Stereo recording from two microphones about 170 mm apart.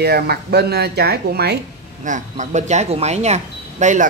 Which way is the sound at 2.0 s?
45° right (ahead or behind).